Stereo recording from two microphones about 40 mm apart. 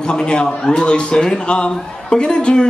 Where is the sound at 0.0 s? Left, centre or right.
Left.